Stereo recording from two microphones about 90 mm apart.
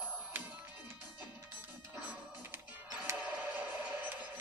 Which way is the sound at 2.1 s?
20° right (ahead or behind).